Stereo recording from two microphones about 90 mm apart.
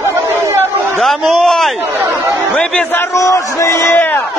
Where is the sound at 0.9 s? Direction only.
Centre (ahead or behind).